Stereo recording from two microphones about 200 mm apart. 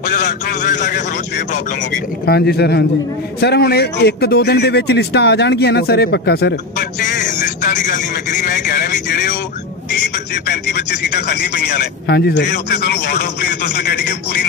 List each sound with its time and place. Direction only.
0.1 s a man's voice: 45° left (ahead or behind)
2.2 s speech: 55° left (ahead or behind)
7.0 s speech: 45° left (ahead or behind)